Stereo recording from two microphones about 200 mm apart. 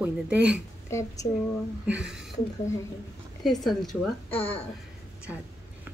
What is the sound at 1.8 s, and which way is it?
Speech, 5° right (ahead or behind).